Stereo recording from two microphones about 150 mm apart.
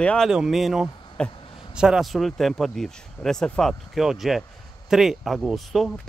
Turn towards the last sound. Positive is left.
turn(degrees=0)  # may be behind; listen again after turning